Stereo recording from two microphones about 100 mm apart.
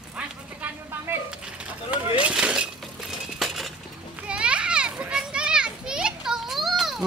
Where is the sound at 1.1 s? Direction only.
20° right (ahead or behind).